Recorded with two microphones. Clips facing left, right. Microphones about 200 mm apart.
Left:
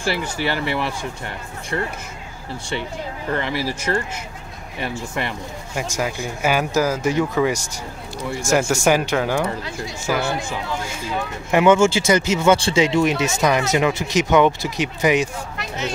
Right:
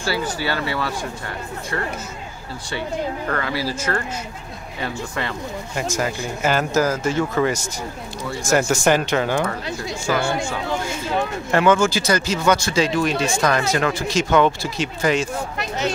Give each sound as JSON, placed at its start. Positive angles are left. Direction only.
{"t": 0.0, "sound": "speech", "side_deg": 20}
{"t": 3.3, "sound": "speech", "side_deg": 20}
{"t": 11.5, "sound": "speech", "side_deg": 20}